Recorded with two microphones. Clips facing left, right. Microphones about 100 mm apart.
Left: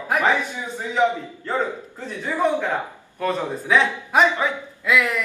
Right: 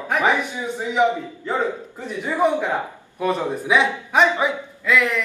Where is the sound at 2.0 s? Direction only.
15° right (ahead or behind).